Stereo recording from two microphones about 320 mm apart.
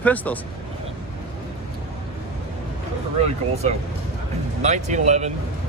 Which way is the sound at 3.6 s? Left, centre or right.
Right.